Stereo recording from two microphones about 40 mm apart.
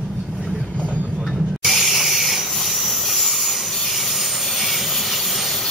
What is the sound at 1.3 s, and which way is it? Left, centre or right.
Hiss, centre.